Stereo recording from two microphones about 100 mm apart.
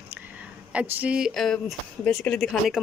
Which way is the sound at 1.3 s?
5° left (ahead or behind).